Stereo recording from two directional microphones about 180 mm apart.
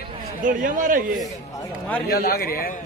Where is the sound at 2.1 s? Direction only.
60° left (ahead or behind).